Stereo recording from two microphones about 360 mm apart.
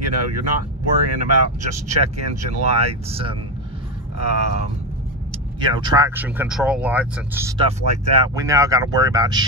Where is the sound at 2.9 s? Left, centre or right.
Centre.